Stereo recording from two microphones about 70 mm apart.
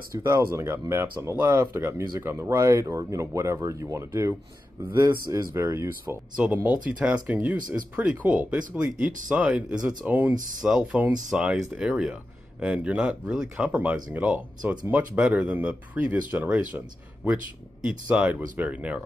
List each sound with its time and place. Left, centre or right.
0.2 s speech: right
1.3 s speech: right
6.3 s speech: right
10.6 s speech: centre
14.1 s speech: right